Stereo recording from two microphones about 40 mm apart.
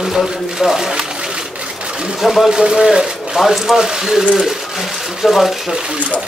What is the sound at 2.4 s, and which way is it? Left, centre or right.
Speech, centre.